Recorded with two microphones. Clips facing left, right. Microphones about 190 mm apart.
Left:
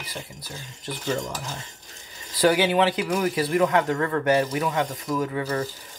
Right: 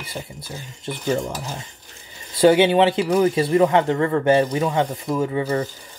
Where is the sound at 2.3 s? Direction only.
25° right (ahead or behind).